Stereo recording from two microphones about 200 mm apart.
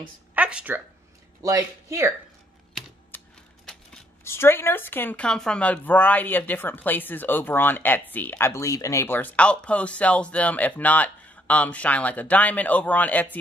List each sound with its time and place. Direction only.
0.3 s a sound: 5° right (ahead or behind)
1.4 s speech: 15° right (ahead or behind)
3.1 s typewriter: 10° left (ahead or behind)
3.6 s speech: 10° left (ahead or behind)